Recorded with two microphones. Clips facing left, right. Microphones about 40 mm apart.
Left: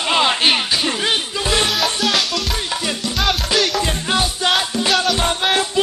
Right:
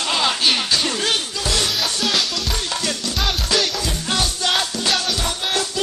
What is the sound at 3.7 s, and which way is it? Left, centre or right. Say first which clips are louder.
Music: left 4 dB; left.